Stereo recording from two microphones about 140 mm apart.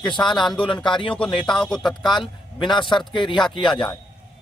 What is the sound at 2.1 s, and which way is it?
Speech, 35° left (ahead or behind).